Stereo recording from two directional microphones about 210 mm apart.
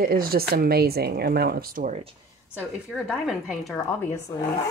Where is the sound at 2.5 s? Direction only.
5° right (ahead or behind).